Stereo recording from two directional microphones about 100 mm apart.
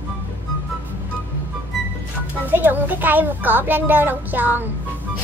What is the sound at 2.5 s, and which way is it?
A child's voice, 20° right (ahead or behind).